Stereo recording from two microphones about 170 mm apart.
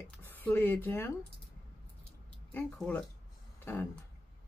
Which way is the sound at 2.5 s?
10° left (ahead or behind).